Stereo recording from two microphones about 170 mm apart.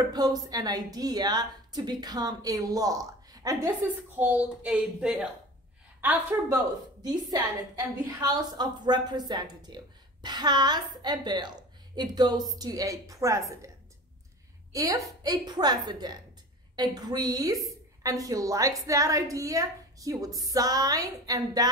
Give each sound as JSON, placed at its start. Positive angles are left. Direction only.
{"t": 0.1, "sound": "a woman's voice", "side_deg": -25}
{"t": 3.8, "sound": "speech", "side_deg": -10}
{"t": 5.9, "sound": "a woman's voice", "side_deg": -15}
{"t": 14.7, "sound": "a woman's voice", "side_deg": -20}